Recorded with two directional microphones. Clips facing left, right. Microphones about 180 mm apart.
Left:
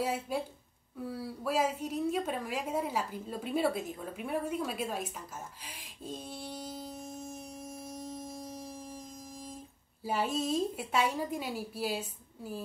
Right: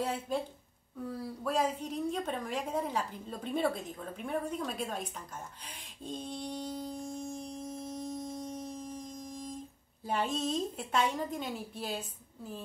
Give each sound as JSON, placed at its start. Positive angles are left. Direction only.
{"t": 0.0, "sound": "a woman's voice", "side_deg": 10}
{"t": 5.7, "sound": "a sound", "side_deg": 5}
{"t": 10.0, "sound": "a woman's voice", "side_deg": 5}